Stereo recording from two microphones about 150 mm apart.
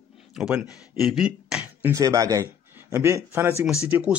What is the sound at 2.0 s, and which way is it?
Speech, 20° right (ahead or behind).